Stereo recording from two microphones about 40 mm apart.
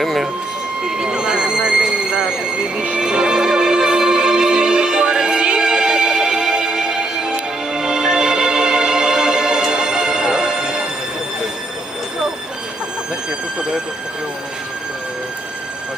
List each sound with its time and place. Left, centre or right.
0.0 s speech: centre
0.8 s a sound: centre
3.0 s music: centre
13.6 s speech: centre